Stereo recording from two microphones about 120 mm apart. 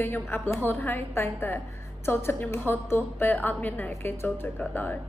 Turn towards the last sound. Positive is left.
turn(degrees=15)  # may be behind; listen again after turning